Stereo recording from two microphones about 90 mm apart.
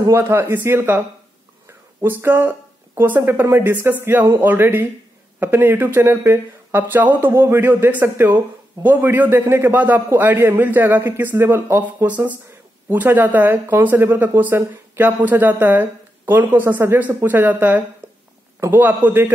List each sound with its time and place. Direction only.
0.1 s speech: 25° right (ahead or behind)
1.7 s a sound: 25° right (ahead or behind)
3.0 s speech: 25° right (ahead or behind)